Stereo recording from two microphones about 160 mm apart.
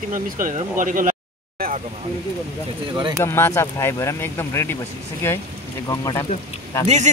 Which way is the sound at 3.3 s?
15° left (ahead or behind).